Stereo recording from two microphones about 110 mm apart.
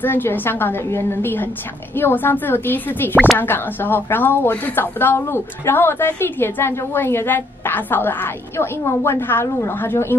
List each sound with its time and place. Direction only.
0.0 s a woman's voice: 20° left (ahead or behind)